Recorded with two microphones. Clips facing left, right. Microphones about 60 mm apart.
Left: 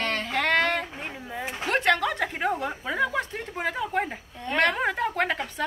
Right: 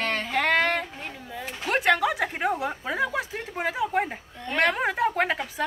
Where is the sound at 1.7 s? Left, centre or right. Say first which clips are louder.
Right 1 dB; centre.